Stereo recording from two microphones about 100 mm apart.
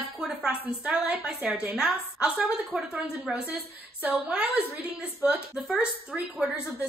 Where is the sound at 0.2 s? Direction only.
10° right (ahead or behind).